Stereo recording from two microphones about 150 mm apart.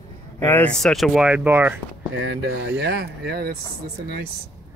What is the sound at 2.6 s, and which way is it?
Speech, 90° right.